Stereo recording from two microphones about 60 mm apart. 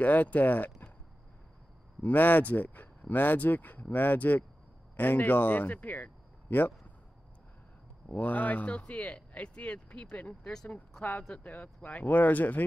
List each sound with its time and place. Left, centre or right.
0.0 s speech: left
2.0 s speech: left
8.1 s speech: left